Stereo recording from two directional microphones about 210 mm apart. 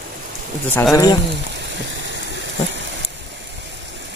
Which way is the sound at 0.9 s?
15° left (ahead or behind).